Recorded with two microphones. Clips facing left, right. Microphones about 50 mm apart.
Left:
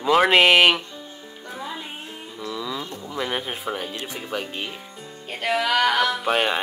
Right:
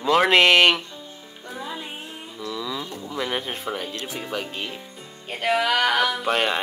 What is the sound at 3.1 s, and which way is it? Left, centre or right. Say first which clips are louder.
Music: even; centre.